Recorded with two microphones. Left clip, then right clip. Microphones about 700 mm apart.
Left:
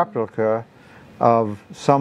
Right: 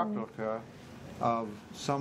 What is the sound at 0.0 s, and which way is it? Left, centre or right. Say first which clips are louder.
Speech: left 14 dB; left.